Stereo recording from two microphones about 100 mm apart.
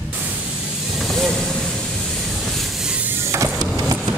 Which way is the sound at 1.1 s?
5° left (ahead or behind).